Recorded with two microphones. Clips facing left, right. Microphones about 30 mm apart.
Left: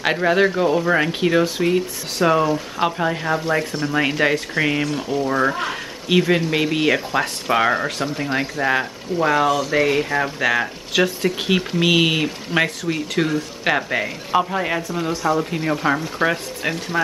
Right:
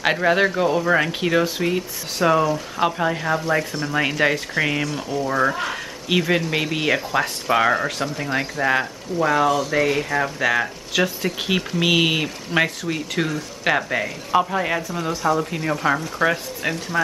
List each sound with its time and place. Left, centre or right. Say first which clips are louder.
0.0 s speech: left 1 dB; centre